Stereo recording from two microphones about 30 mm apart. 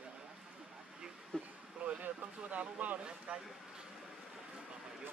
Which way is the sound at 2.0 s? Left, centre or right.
Right.